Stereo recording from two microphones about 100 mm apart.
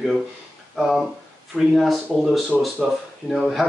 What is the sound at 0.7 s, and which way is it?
Speech, centre (ahead or behind).